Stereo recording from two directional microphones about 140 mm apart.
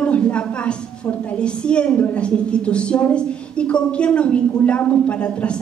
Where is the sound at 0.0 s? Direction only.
10° left (ahead or behind).